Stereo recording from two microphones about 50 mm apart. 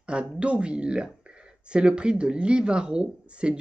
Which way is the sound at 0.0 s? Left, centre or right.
Right.